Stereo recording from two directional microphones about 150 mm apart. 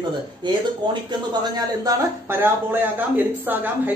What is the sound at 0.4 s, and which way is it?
Speech, 30° right (ahead or behind).